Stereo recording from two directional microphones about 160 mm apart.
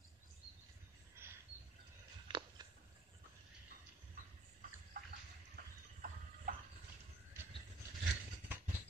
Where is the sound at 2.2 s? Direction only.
30° right (ahead or behind).